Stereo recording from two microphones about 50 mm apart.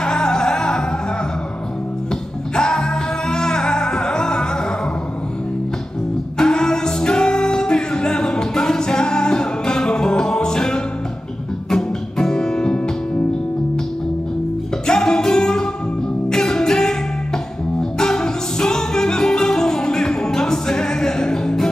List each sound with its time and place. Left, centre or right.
0.0 s music: centre
2.5 s music: centre
6.3 s music: centre
14.9 s music: centre
17.9 s music: centre